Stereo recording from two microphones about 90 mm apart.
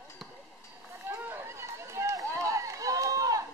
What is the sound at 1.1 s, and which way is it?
Run, 30° right (ahead or behind).